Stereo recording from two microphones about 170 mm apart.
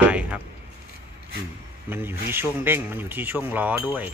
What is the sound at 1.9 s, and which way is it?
Speech, 15° right (ahead or behind).